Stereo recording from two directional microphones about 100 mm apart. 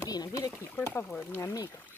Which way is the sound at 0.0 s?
40° left (ahead or behind).